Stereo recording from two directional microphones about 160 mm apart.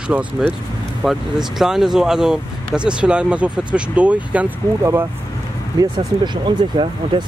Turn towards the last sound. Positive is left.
turn(degrees=-30)  # may be behind; listen again after turning